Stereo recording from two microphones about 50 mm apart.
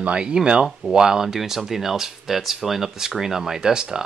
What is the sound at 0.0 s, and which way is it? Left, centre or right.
Speech, right.